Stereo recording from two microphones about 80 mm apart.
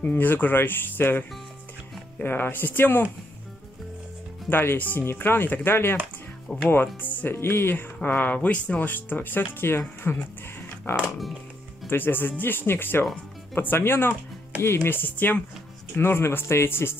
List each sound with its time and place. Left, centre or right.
0.0 s speech: left
4.5 s speech: left
11.9 s speech: left